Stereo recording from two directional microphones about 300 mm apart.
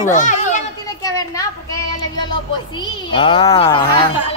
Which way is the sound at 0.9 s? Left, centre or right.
Centre.